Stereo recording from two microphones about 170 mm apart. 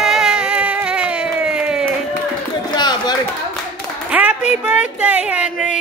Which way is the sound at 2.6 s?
25° left (ahead or behind).